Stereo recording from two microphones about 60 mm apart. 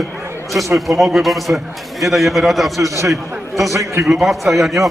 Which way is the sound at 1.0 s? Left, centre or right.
Centre.